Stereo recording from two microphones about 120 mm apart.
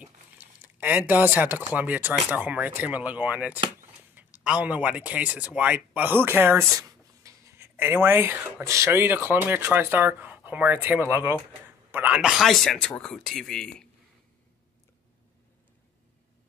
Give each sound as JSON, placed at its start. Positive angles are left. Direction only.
{"t": 0.0, "sound": "speech", "side_deg": -15}